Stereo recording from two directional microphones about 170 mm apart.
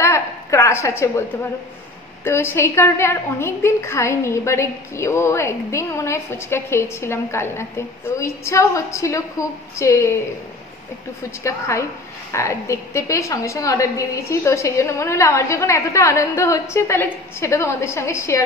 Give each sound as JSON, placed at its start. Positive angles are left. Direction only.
{"t": 0.0, "sound": "a sound", "side_deg": 15}
{"t": 2.2, "sound": "a woman's voice", "side_deg": 15}
{"t": 11.4, "sound": "a woman's voice", "side_deg": 15}